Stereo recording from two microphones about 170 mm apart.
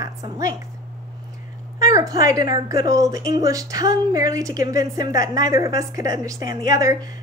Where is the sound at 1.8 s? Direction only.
20° right (ahead or behind).